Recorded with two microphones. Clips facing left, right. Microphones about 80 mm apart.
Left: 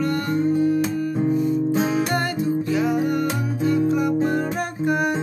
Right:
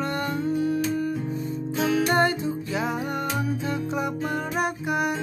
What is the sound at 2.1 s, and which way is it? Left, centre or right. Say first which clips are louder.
Music: even; right.